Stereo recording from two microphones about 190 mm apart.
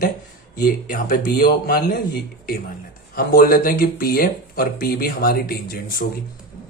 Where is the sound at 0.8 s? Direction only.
45° left (ahead or behind).